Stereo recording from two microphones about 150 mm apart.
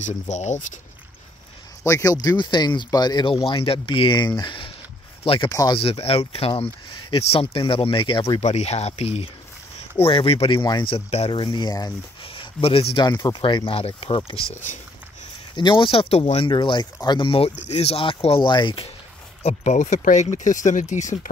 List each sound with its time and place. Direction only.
0.0 s speech: 50° left (ahead or behind)
1.8 s speech: 20° left (ahead or behind); by 5.5 s 40° left (ahead or behind)
5.5 s speech: 20° left (ahead or behind)
5.8 s speech: 40° left (ahead or behind)
8.4 s speech: 45° left (ahead or behind)
15.5 s speech: 35° left (ahead or behind)
19.4 s speech: 55° left (ahead or behind)